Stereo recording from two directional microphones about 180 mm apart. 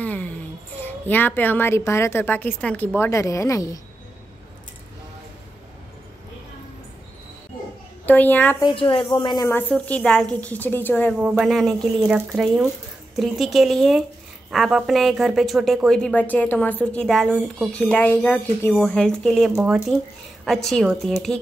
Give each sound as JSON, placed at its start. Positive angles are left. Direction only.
{"t": 0.0, "sound": "a sound", "side_deg": 10}
{"t": 0.7, "sound": "a woman's voice", "side_deg": 10}
{"t": 8.0, "sound": "a woman's voice", "side_deg": 10}
{"t": 8.5, "sound": "a woman's voice", "side_deg": 25}
{"t": 9.6, "sound": "a woman's voice", "side_deg": 10}